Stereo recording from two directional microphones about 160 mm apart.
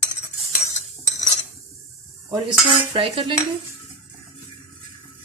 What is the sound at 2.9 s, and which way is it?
Cutlery, 35° right (ahead or behind).